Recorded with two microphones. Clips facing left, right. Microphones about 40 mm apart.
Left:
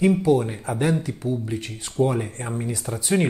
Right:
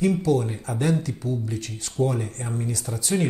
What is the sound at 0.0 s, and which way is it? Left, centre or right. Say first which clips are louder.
Speech: left 3 dB; left.